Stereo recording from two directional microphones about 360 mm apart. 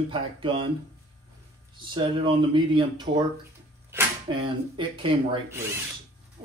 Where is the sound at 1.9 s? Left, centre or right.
Centre.